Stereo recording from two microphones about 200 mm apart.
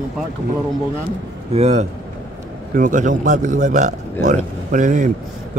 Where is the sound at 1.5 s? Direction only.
30° right (ahead or behind).